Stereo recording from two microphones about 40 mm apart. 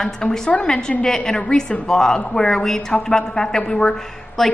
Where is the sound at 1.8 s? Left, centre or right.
Centre.